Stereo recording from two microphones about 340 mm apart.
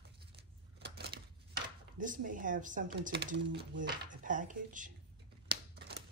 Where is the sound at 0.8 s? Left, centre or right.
Right.